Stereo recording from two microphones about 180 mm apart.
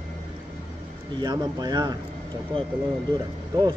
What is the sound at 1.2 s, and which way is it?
Speech, 20° right (ahead or behind).